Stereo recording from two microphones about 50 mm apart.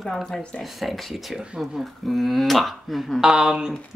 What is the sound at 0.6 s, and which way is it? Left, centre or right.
Speech, centre.